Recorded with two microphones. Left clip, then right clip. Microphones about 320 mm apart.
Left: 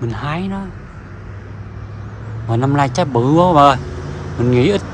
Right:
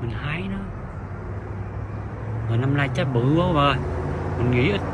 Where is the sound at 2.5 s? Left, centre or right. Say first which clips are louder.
Left 9 dB; centre.